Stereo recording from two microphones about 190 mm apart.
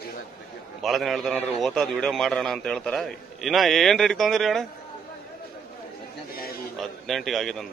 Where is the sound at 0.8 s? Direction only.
Centre (ahead or behind).